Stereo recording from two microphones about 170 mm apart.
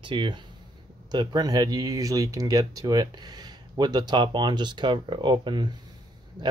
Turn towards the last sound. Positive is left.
turn(degrees=-25)  # may be behind; listen again after turning